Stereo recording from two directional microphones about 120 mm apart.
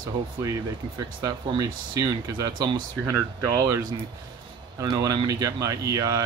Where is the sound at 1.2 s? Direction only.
30° right (ahead or behind).